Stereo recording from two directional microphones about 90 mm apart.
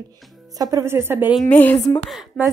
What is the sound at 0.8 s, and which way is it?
Speech, 25° right (ahead or behind).